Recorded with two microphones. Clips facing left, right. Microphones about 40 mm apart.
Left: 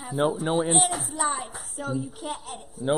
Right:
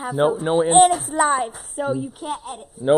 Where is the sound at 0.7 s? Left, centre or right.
Right.